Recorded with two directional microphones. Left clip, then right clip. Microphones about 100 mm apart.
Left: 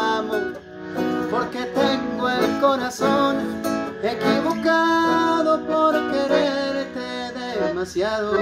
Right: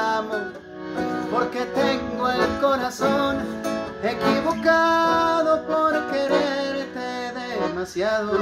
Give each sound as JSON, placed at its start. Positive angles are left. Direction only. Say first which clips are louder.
{"t": 0.0, "sound": "music", "louder": "left 1 dB", "side_deg": 20}
{"t": 1.6, "sound": "music", "louder": "left 1 dB", "side_deg": 15}